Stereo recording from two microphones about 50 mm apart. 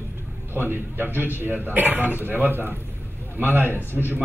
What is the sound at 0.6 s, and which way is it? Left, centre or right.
A man's voice, right.